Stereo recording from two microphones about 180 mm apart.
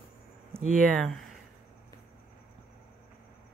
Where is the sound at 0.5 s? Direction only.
45° right (ahead or behind).